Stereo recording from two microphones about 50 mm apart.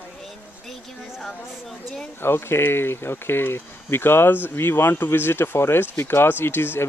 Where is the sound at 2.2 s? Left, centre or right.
Left.